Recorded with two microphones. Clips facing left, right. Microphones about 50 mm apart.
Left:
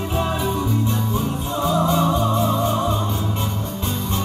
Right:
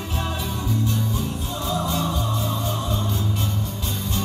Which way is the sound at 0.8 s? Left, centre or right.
Left.